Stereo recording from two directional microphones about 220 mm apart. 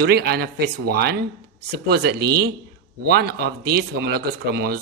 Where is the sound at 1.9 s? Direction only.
45° right (ahead or behind).